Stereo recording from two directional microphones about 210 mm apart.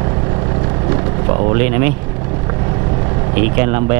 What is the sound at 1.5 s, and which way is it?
Speech, 10° right (ahead or behind).